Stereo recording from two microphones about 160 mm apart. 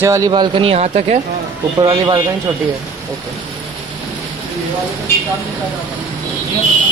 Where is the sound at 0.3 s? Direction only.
30° right (ahead or behind).